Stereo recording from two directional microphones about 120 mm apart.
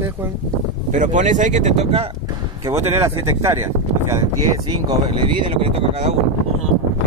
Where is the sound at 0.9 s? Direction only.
90° right; by 2.0 s 70° right (ahead or behind).